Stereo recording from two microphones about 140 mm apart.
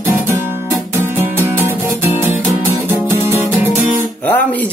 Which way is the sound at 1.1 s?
15° right (ahead or behind).